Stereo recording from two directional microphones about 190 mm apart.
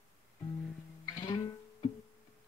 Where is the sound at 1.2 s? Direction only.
20° left (ahead or behind).